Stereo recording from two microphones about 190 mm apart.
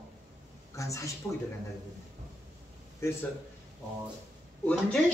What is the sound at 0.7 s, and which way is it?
Speech, 15° left (ahead or behind).